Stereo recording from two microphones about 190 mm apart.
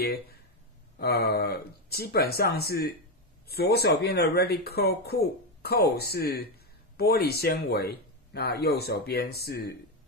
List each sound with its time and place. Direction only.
0.9 s speech: 55° left (ahead or behind)